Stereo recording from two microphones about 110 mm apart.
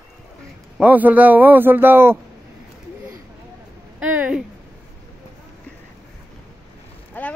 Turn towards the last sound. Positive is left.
turn(degrees=15)  # may be behind; listen again after turning